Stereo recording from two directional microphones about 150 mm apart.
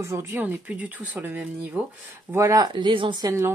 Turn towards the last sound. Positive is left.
turn(degrees=-15)  # may be behind; listen again after turning